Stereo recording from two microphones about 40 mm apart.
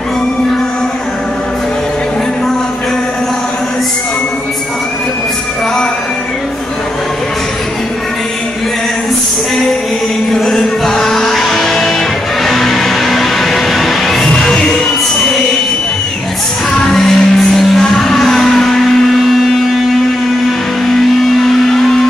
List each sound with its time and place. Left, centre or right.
10.3 s music: centre
14.3 s music: centre
16.7 s music: centre
20.8 s vehicle: centre